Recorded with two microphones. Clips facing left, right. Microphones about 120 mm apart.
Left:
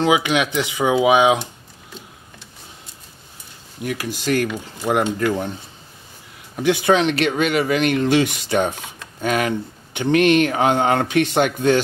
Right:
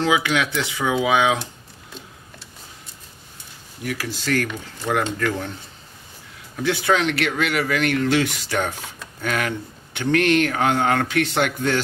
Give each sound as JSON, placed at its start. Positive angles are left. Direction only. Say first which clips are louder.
{"t": 0.0, "sound": "speech", "louder": "left 3 dB", "side_deg": 20}
{"t": 3.8, "sound": "speech", "louder": "left 3 dB", "side_deg": 20}
{"t": 6.5, "sound": "speech", "louder": "left 4 dB", "side_deg": 20}